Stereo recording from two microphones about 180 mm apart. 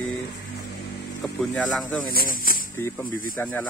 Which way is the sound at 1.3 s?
Centre (ahead or behind).